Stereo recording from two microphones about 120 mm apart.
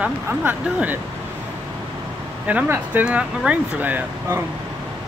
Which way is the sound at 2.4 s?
15° right (ahead or behind).